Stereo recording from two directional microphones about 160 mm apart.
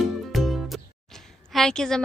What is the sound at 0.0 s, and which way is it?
A woman's voice, centre (ahead or behind).